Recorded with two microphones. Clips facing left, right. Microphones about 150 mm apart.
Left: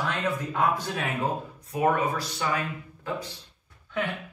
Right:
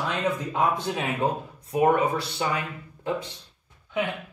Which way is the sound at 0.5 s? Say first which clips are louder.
Right 1 dB; 20° right (ahead or behind).